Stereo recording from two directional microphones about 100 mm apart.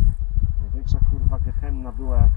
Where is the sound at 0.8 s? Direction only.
5° left (ahead or behind).